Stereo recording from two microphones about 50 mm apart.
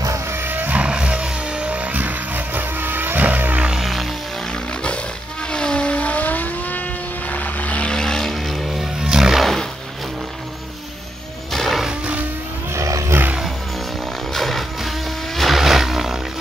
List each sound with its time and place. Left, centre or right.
0.3 s music: right
0.7 s vehicle: centre; by 3.6 s right
3.8 s music: centre
5.5 s vehicle: centre
7.9 s vehicle: centre
9.0 s music: centre
9.4 s roaring cats: centre
11.5 s music: centre
12.7 s vehicle: right
14.3 s music: centre
15.3 s a sound: centre